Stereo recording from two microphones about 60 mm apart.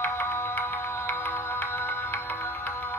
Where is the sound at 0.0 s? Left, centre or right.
Left.